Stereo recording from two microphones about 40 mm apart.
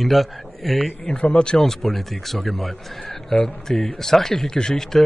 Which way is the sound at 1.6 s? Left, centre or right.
Centre.